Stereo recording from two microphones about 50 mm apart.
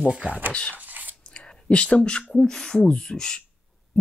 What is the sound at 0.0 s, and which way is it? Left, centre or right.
Speech, centre.